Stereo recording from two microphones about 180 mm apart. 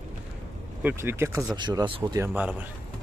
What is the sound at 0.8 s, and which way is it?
Speech, 10° right (ahead or behind).